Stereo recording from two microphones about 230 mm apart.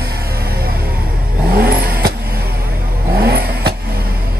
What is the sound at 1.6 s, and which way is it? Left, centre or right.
Vehicle, right.